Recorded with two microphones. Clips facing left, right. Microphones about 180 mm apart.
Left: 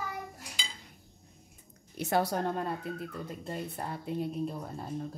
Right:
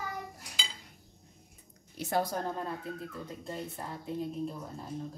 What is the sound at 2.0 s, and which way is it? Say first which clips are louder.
A woman's voice: left 2 dB; 70° left (ahead or behind).